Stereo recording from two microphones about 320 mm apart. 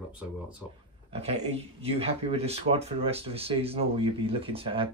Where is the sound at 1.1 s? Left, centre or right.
Centre.